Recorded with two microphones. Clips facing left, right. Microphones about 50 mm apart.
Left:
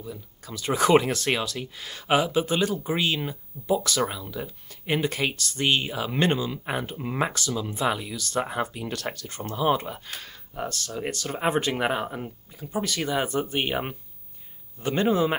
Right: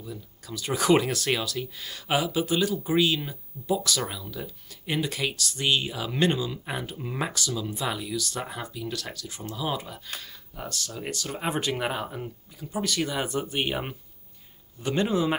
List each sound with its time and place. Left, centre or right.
0.0 s speech: centre
8.7 s speech: left
9.8 s speech: left